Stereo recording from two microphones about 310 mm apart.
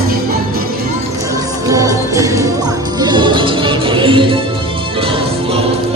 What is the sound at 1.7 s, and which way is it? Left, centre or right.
Music, centre.